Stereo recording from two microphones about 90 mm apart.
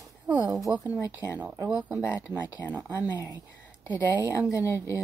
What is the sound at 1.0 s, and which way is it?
Speech, 35° left (ahead or behind).